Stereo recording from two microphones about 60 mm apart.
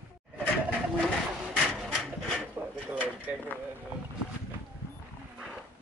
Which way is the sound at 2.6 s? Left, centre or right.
Right.